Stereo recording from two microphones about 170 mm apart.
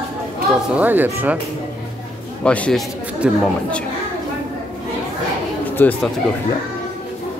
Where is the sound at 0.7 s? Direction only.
10° right (ahead or behind).